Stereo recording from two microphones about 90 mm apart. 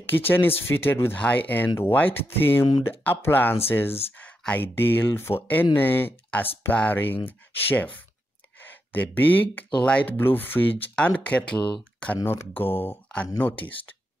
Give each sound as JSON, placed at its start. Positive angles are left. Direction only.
{"t": 0.0, "sound": "speech", "side_deg": 25}